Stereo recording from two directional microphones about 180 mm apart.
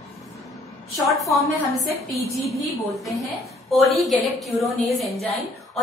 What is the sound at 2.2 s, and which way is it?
Speech, 15° left (ahead or behind).